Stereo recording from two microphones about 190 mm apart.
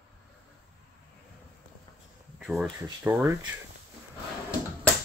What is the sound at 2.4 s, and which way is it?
Speech, centre (ahead or behind).